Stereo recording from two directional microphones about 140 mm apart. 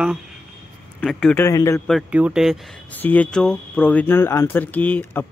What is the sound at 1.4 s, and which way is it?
Speech, 20° left (ahead or behind).